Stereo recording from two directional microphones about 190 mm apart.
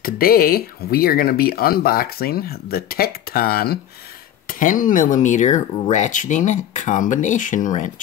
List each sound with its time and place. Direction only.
0.0 s speech: 50° left (ahead or behind)